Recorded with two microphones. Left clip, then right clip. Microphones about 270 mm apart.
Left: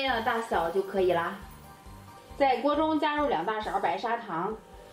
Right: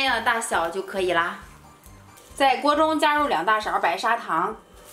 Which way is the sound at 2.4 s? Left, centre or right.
Right.